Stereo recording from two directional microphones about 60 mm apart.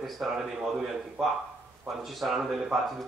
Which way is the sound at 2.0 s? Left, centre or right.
Centre.